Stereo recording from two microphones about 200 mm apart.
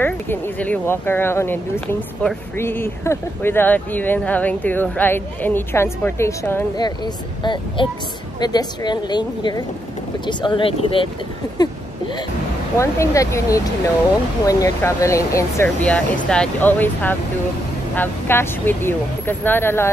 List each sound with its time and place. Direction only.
0.0 s speech: 10° left (ahead or behind)
7.4 s speech: 25° left (ahead or behind)
12.7 s speech: 15° left (ahead or behind)